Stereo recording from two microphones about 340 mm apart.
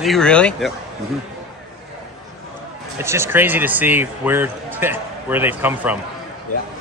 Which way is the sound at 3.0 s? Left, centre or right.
Centre.